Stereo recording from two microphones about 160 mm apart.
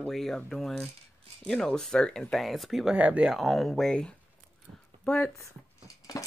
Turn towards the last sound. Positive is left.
turn(degrees=20)  # may be behind; listen again after turning